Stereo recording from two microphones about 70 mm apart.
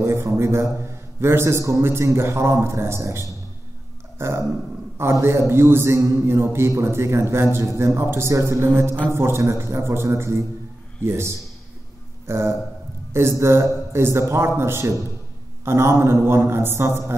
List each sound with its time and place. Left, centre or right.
0.0 s a man's voice: right